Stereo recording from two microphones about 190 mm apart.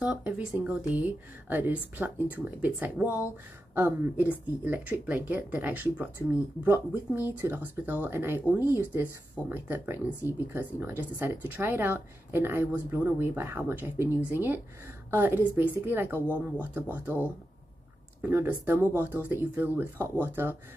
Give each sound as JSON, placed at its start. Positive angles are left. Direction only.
{"t": 0.0, "sound": "speech", "side_deg": -5}